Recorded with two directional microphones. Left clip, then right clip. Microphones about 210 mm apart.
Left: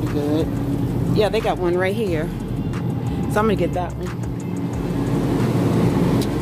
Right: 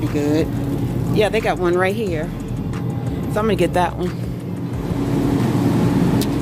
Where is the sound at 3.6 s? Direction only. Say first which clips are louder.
Right 5 dB; 30° right (ahead or behind).